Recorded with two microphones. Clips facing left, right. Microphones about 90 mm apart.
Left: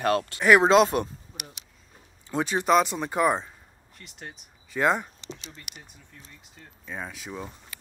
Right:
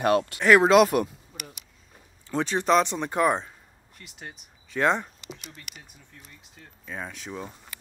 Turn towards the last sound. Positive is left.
turn(degrees=5)  # may be behind; listen again after turning